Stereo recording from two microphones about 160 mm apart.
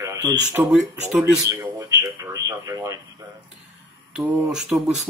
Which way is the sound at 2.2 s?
25° right (ahead or behind).